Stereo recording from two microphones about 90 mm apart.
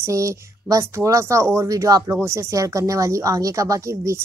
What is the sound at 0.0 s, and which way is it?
Speech, 35° right (ahead or behind).